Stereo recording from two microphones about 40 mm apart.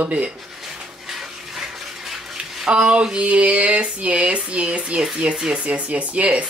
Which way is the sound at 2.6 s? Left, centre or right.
Right.